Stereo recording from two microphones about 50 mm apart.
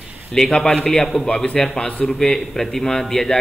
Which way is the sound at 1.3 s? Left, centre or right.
Centre.